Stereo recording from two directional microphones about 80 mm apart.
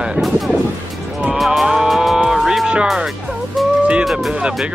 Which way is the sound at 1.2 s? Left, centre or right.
Centre.